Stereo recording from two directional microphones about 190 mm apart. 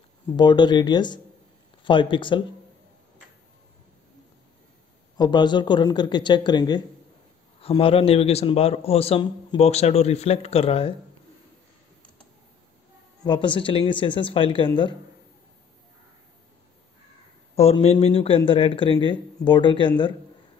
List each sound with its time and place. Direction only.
0.4 s speech: 25° left (ahead or behind)
5.1 s a man's voice: 20° left (ahead or behind)
13.2 s speech: 25° left (ahead or behind)
17.6 s speech: 30° left (ahead or behind)